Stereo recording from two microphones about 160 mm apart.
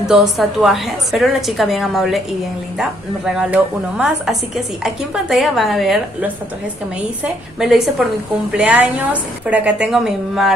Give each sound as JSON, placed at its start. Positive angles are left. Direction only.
{"t": 0.0, "sound": "a woman's voice", "side_deg": -5}
{"t": 7.5, "sound": "a woman's voice", "side_deg": -5}